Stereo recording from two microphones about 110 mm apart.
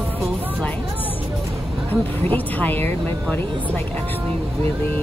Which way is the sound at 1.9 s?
15° left (ahead or behind).